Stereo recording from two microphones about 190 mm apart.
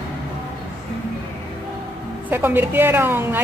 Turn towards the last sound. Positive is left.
turn(degrees=-10)  # may be behind; listen again after turning